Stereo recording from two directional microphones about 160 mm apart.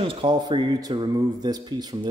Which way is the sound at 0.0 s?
30° right (ahead or behind).